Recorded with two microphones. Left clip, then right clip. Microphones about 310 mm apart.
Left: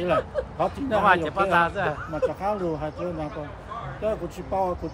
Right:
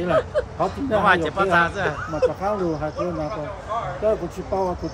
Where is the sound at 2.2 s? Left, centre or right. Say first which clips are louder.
Right 5 dB; right.